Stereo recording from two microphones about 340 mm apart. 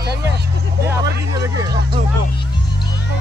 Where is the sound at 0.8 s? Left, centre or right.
Centre.